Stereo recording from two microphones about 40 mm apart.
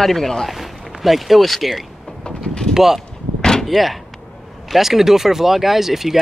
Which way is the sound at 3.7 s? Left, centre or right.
Centre.